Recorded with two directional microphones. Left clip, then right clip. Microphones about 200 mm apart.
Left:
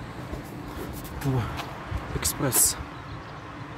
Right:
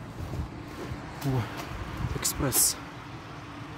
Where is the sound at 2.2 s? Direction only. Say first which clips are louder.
Left 2 dB; 5° right (ahead or behind).